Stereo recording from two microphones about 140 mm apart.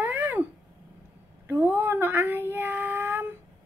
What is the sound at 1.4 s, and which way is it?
Child singing, 15° right (ahead or behind).